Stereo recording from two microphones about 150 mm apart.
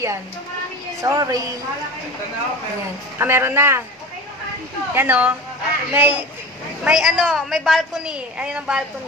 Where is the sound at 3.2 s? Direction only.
15° right (ahead or behind).